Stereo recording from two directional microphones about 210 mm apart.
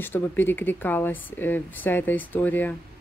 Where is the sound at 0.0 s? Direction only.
10° left (ahead or behind).